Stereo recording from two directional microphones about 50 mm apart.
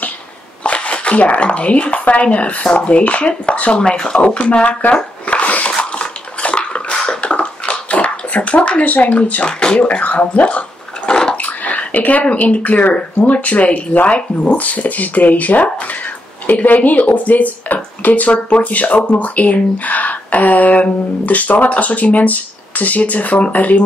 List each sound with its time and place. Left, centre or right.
0.7 s speech: left
5.2 s dog: left
5.8 s bathtub: left
9.4 s speech: centre
9.8 s speech: left
11.1 s bathtub: centre
11.3 s speech: left